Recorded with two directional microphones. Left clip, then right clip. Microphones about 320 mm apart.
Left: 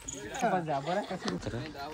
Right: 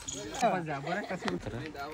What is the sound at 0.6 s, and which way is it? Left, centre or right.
Speech, centre.